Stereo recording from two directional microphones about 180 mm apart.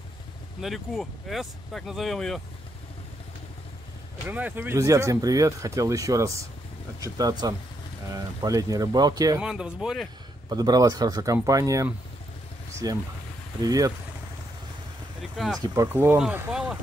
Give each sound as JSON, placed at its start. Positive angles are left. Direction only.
{"t": 0.6, "sound": "speech", "side_deg": 0}
{"t": 4.3, "sound": "speech", "side_deg": -10}
{"t": 9.4, "sound": "speech", "side_deg": -5}
{"t": 10.5, "sound": "speech", "side_deg": -20}
{"t": 15.3, "sound": "speech", "side_deg": 0}
{"t": 15.6, "sound": "speech", "side_deg": -15}